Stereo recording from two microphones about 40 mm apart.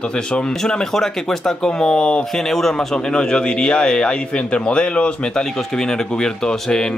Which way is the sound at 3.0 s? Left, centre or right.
Left.